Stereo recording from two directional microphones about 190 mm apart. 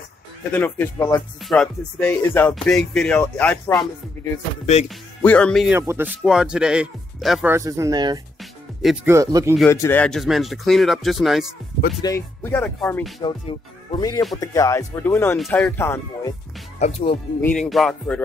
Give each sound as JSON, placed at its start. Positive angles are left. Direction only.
{"t": 0.5, "sound": "speech", "side_deg": 10}
{"t": 1.4, "sound": "speech", "side_deg": 5}
{"t": 5.8, "sound": "speech", "side_deg": -15}
{"t": 6.0, "sound": "speech", "side_deg": -5}
{"t": 7.5, "sound": "speech", "side_deg": -15}
{"t": 9.7, "sound": "speech", "side_deg": 10}
{"t": 12.0, "sound": "speech", "side_deg": 15}
{"t": 13.2, "sound": "speech", "side_deg": 25}
{"t": 16.8, "sound": "speech", "side_deg": 30}
{"t": 17.4, "sound": "speech", "side_deg": 5}